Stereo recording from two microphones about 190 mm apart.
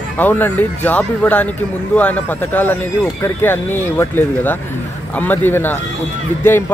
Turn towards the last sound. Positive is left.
turn(degrees=10)  # may be behind; listen again after turning